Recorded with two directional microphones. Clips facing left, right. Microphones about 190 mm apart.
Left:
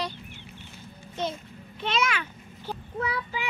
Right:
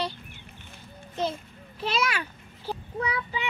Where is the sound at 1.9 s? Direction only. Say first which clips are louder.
Left 1 dB; 35° right (ahead or behind).